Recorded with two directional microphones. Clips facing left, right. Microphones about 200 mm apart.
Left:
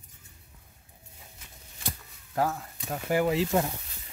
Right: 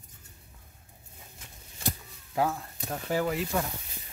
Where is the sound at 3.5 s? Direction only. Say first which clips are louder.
Left 4 dB; 25° left (ahead or behind).